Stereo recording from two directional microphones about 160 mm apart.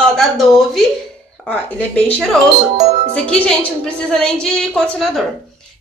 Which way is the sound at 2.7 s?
45° right (ahead or behind).